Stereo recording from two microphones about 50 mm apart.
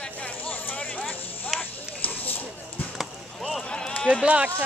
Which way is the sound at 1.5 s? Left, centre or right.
Left.